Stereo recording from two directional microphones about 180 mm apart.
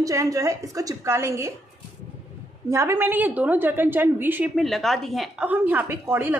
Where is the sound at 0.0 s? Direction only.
20° right (ahead or behind).